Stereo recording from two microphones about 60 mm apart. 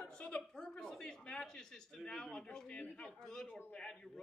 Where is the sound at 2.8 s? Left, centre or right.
Left.